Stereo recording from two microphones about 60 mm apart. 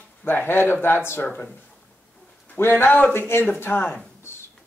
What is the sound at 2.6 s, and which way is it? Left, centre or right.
Speech, left.